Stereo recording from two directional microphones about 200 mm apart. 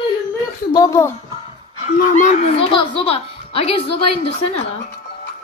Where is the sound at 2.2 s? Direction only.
35° left (ahead or behind).